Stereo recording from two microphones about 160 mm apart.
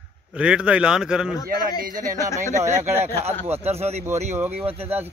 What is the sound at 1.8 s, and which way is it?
Speech, 60° right (ahead or behind).